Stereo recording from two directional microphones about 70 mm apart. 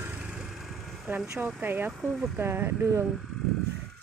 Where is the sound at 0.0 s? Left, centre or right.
Right.